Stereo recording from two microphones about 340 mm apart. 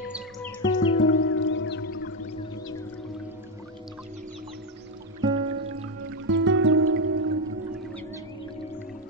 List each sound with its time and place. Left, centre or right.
0.1 s music: centre
0.7 s music: left
5.2 s music: centre
6.2 s music: right